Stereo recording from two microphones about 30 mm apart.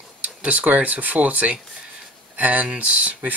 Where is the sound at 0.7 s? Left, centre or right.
Right.